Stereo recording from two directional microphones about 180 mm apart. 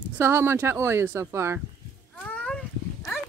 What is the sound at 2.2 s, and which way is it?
Cat, 5° left (ahead or behind).